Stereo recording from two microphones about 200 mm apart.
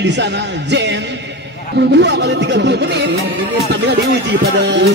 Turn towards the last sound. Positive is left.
turn(degrees=-60)  # may be behind; listen again after turning